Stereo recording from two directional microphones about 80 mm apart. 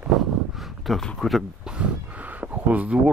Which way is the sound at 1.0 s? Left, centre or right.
Centre.